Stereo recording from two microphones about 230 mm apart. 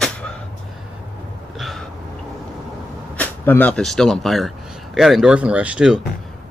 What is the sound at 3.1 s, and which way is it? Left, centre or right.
Speech, centre.